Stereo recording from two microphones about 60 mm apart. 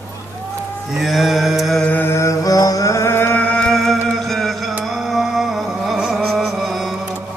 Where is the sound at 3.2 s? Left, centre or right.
Left.